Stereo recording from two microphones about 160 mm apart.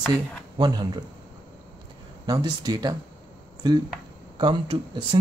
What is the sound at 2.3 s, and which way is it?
Speech, 25° right (ahead or behind).